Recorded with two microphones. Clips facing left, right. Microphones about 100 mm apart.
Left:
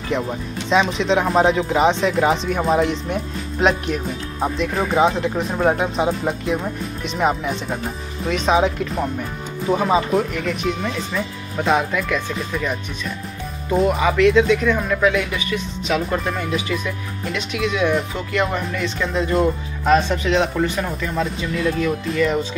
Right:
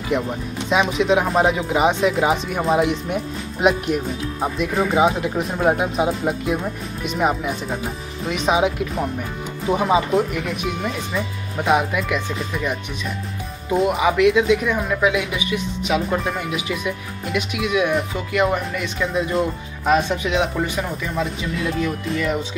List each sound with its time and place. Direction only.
0.1 s speech: 10° right (ahead or behind)